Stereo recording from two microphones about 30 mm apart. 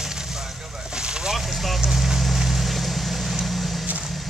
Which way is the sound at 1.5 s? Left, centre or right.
Centre.